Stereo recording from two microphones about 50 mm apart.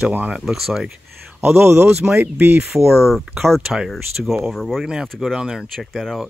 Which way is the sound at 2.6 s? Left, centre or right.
Centre.